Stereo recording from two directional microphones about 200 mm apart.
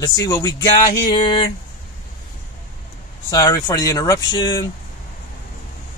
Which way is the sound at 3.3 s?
15° left (ahead or behind).